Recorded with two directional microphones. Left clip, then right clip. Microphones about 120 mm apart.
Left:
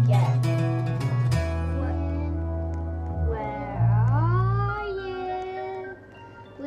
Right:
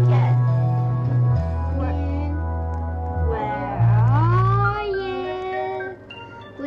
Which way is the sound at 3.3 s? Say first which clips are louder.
Right 6 dB; 25° right (ahead or behind).